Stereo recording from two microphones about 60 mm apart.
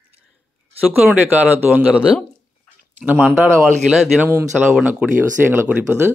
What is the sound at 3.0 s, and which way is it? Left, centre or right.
Speech, right.